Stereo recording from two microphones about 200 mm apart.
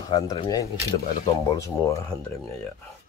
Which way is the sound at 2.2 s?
5° left (ahead or behind).